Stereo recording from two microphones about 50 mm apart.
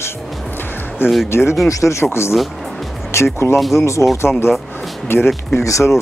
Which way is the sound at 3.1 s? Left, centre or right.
Left.